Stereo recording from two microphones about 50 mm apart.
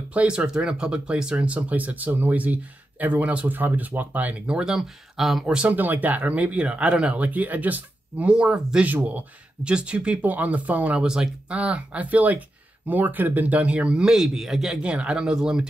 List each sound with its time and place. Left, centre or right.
0.1 s speech: right
0.5 s speech: centre; by 4.4 s right
4.5 s speech: centre
4.7 s speech: centre
5.7 s speech: right
8.3 s speech: centre
8.8 s speech: right
9.6 s speech: right
11.0 s speech: centre
11.5 s speech: right; by 14.8 s centre
14.8 s speech: right